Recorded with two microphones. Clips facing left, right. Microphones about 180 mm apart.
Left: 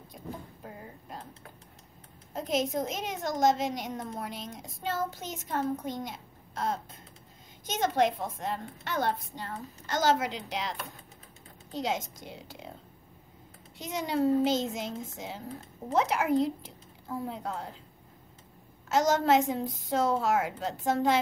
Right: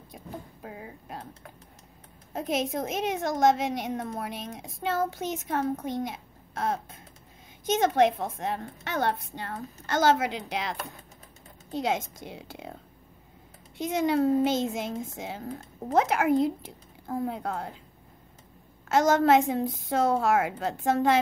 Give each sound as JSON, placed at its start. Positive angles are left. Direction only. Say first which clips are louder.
{"t": 0.7, "sound": "music", "louder": "right 3 dB", "side_deg": -70}
{"t": 2.3, "sound": "a child's voice", "louder": "right 1 dB", "side_deg": -60}
{"t": 6.0, "sound": "a sound", "louder": "right 5 dB", "side_deg": -55}
{"t": 7.8, "sound": "a child's voice", "louder": "right 3 dB", "side_deg": -60}
{"t": 13.7, "sound": "a woman's voice", "louder": "right 5 dB", "side_deg": -50}
{"t": 18.9, "sound": "a child's voice", "louder": "right 3 dB", "side_deg": -55}